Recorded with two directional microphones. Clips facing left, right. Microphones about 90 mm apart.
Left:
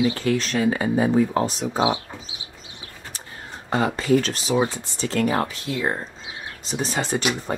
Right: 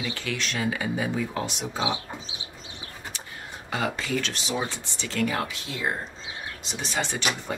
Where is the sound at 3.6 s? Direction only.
35° left (ahead or behind).